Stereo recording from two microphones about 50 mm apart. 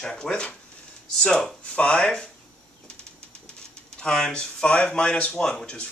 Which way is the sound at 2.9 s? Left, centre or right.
Centre.